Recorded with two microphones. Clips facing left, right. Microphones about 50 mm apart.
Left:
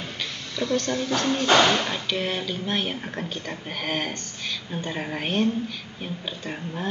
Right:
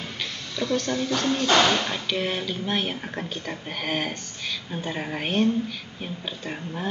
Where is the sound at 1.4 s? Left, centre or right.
Centre.